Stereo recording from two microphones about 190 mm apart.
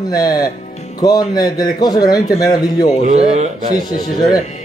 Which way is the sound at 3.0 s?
35° right (ahead or behind).